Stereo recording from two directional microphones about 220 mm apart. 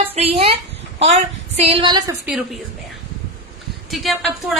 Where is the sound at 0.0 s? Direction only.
25° right (ahead or behind).